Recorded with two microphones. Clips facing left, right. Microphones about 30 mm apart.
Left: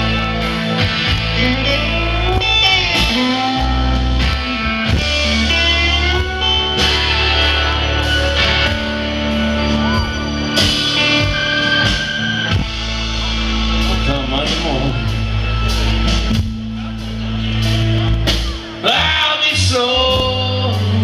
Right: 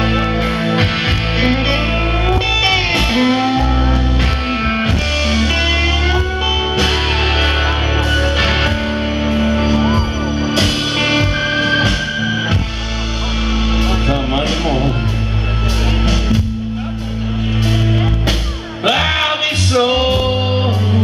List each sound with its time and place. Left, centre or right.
0.0 s music: centre
13.7 s music: centre
18.9 s music: centre